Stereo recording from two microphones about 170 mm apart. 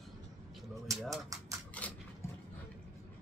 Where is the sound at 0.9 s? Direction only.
Centre (ahead or behind).